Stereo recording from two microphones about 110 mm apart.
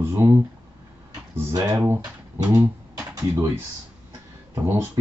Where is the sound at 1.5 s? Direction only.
30° right (ahead or behind).